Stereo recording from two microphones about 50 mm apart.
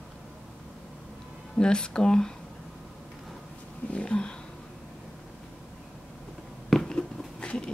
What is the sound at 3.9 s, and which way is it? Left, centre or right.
Speech, left.